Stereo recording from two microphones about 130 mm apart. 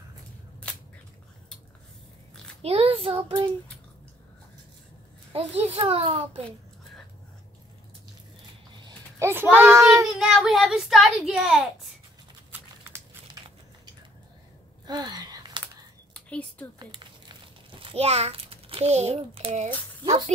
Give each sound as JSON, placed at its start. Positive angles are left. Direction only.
{"t": 2.6, "sound": "child singing", "side_deg": -50}
{"t": 5.3, "sound": "a child's voice", "side_deg": -55}
{"t": 5.8, "sound": "child singing", "side_deg": -45}
{"t": 9.2, "sound": "a child's voice", "side_deg": -15}
{"t": 10.0, "sound": "a child's voice", "side_deg": 0}
{"t": 12.4, "sound": "a sound", "side_deg": -15}
{"t": 14.9, "sound": "a sound", "side_deg": -35}
{"t": 15.6, "sound": "a sound", "side_deg": 10}
{"t": 16.7, "sound": "crumpling", "side_deg": -35}